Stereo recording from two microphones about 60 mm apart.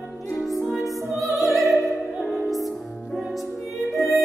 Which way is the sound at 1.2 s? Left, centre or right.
Centre.